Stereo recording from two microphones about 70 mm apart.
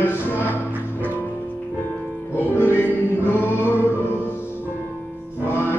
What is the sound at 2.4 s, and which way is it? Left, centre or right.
Music, left.